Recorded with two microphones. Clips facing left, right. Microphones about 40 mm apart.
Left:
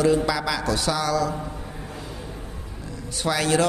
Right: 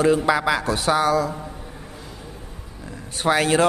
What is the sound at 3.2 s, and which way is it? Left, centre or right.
Speech, right.